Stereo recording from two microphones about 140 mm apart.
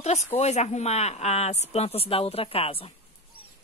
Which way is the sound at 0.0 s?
50° left (ahead or behind).